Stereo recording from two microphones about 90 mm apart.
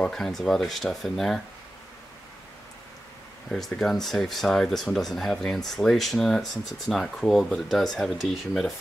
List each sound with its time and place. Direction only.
0.0 s speech: 5° left (ahead or behind)
3.4 s speech: 5° left (ahead or behind)